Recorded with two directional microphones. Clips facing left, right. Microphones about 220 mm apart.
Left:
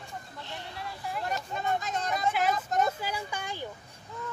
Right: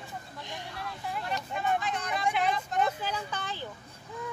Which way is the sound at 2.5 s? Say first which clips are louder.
Left 2 dB; 40° left (ahead or behind).